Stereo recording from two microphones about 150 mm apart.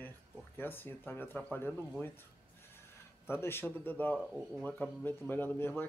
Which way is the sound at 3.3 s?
15° left (ahead or behind).